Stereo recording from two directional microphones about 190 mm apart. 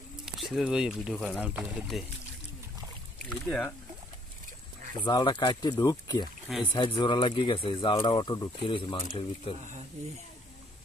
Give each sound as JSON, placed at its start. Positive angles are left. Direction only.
{"t": 0.2, "sound": "speech", "side_deg": 0}
{"t": 3.4, "sound": "speech", "side_deg": 5}
{"t": 5.0, "sound": "speech", "side_deg": 25}